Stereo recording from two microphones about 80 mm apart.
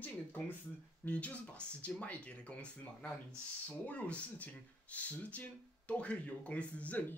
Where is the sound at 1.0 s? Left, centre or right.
Centre.